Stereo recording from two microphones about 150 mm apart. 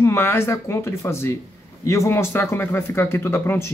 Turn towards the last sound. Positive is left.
turn(degrees=15)  # may be behind; listen again after turning